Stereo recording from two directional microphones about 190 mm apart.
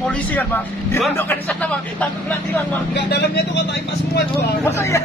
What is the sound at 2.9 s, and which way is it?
Speech, 60° left (ahead or behind).